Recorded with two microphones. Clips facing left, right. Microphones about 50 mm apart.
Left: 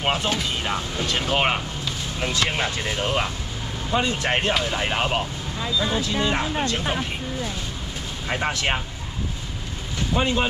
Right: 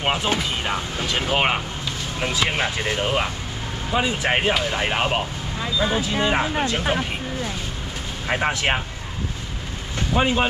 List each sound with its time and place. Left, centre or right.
0.0 s speech: centre
8.3 s speech: centre
10.1 s speech: centre